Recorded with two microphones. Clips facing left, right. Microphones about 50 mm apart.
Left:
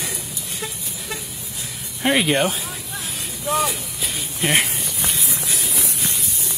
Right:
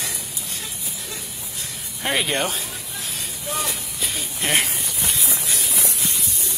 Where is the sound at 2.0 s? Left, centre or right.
Centre.